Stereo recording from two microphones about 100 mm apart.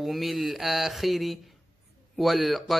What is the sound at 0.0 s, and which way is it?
Speech, centre (ahead or behind).